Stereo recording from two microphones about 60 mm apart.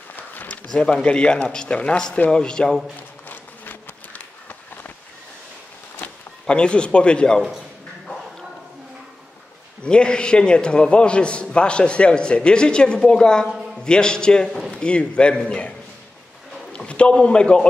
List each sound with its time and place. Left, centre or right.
0.1 s a sound: left
0.7 s a man's voice: centre
3.3 s a sound: left
6.4 s a man's voice: centre
9.8 s a man's voice: centre
16.7 s a man's voice: centre